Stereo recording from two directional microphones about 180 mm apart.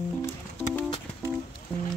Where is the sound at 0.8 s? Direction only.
25° left (ahead or behind).